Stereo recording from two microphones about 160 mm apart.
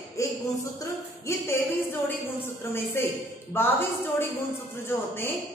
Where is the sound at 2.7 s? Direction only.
15° left (ahead or behind).